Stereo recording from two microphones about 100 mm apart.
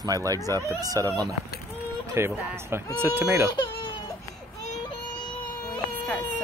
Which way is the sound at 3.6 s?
50° left (ahead or behind).